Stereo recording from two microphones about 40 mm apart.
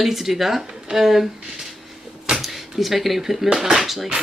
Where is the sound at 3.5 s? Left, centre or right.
Centre.